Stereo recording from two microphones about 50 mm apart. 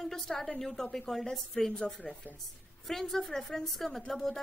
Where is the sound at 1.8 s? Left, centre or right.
Centre.